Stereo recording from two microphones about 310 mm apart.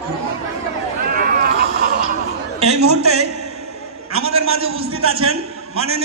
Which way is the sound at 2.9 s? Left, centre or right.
Right.